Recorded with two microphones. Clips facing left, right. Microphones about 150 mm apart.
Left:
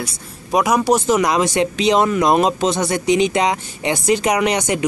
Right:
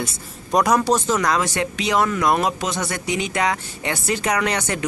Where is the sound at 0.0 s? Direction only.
5° left (ahead or behind).